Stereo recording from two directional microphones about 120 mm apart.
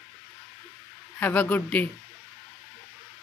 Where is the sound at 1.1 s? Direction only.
15° left (ahead or behind).